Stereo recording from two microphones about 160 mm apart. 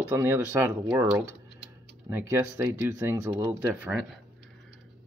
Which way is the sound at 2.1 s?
15° right (ahead or behind).